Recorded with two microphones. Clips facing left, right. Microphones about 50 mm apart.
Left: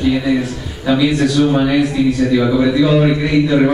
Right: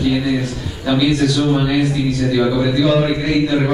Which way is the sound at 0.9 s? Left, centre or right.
Centre.